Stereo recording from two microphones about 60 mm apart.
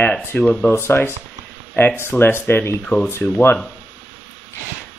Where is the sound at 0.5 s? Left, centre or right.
Left.